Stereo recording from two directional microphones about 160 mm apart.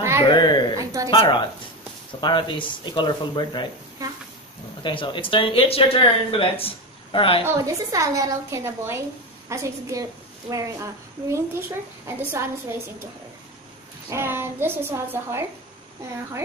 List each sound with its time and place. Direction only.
0.2 s speech: 30° left (ahead or behind)
0.7 s a sound: 20° right (ahead or behind)
1.1 s speech: 30° left (ahead or behind)
4.8 s speech: 30° left (ahead or behind)
7.4 s a woman's voice: 20° right (ahead or behind)
14.1 s a child's voice: 15° right (ahead or behind)